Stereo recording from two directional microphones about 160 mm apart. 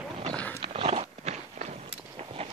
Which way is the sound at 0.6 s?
35° right (ahead or behind).